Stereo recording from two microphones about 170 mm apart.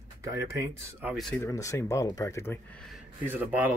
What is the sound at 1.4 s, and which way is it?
Speech, 15° left (ahead or behind).